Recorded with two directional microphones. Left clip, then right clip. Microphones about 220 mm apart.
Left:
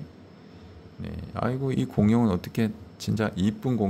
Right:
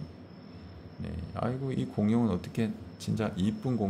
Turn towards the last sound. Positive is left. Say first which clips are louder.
# left 5 dB
turn(degrees=25)  # may be behind; listen again after turning